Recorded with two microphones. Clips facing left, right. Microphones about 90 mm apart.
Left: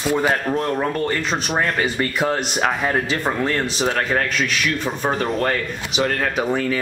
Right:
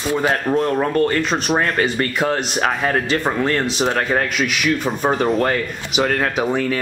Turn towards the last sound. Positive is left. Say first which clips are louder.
# right 1 dB
turn(degrees=0)  # may be behind; listen again after turning